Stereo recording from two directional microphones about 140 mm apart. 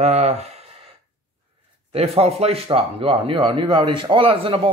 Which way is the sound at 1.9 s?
45° right (ahead or behind).